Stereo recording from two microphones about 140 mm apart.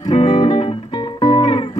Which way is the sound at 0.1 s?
35° left (ahead or behind).